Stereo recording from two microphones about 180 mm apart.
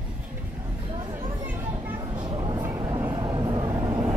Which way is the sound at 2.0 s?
25° right (ahead or behind).